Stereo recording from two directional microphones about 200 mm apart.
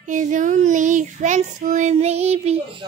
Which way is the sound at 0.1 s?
40° right (ahead or behind).